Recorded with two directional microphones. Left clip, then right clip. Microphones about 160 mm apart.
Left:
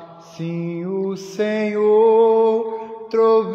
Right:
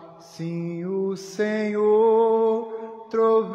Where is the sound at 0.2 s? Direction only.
40° right (ahead or behind).